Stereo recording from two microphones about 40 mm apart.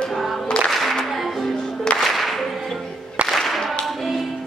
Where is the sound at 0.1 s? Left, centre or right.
Centre.